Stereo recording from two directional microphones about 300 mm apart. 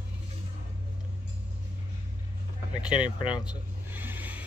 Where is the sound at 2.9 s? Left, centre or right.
Centre.